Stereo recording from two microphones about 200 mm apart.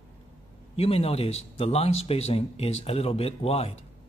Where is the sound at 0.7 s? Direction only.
30° left (ahead or behind).